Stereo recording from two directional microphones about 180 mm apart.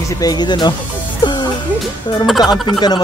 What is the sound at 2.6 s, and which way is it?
Speech, 25° left (ahead or behind).